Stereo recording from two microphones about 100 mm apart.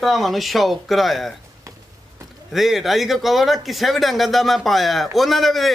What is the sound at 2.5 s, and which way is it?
Speech, centre (ahead or behind).